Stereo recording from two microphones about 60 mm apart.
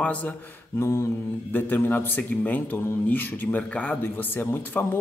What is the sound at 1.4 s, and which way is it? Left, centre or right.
A man's voice, left.